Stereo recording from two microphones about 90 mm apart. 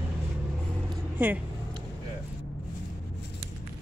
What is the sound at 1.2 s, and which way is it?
Speech, 20° right (ahead or behind).